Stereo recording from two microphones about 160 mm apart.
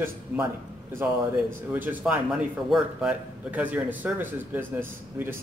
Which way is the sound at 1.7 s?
10° right (ahead or behind).